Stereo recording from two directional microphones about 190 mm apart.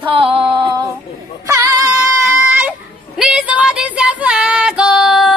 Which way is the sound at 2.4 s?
10° right (ahead or behind).